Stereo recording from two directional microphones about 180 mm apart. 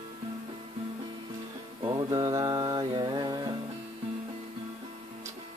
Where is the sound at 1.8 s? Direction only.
20° right (ahead or behind).